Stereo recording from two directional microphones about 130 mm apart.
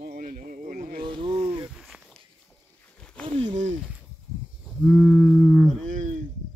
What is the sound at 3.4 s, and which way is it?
Speech, 65° right (ahead or behind).